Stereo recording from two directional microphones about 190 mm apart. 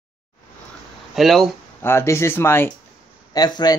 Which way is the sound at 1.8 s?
10° left (ahead or behind).